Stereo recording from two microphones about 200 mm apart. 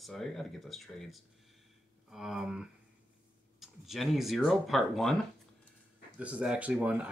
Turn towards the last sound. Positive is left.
turn(degrees=-5)  # may be behind; listen again after turning